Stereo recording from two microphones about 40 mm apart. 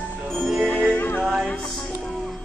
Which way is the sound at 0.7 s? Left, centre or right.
Left.